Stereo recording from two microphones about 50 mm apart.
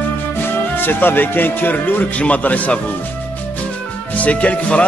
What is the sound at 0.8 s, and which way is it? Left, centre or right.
Speech, left.